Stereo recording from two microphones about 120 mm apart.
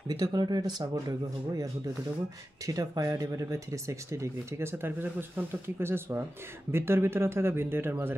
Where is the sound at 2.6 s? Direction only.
30° right (ahead or behind).